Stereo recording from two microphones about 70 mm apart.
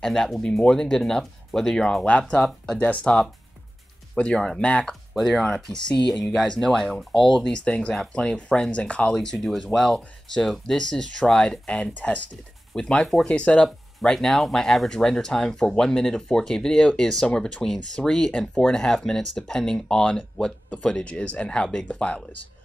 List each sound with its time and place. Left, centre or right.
0.0 s speech: centre
2.8 s speech: centre
9.1 s speech: centre